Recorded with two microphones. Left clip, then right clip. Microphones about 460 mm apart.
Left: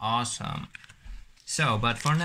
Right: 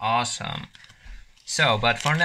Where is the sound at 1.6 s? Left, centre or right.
Centre.